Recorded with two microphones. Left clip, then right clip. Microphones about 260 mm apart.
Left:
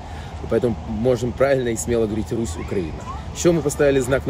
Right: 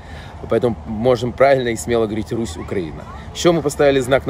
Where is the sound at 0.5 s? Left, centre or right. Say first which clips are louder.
Right 3 dB; centre.